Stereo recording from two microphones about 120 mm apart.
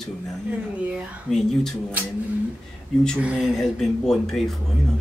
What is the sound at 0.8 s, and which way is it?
Speech, 10° right (ahead or behind).